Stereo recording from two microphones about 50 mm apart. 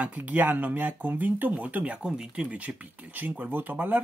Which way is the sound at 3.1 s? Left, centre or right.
Right.